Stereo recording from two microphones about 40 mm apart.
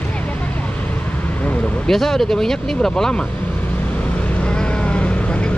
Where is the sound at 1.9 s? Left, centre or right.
Centre.